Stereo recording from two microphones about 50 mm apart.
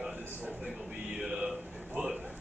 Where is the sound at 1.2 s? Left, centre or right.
Centre.